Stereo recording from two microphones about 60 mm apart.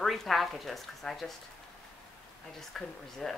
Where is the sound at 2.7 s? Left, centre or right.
Centre.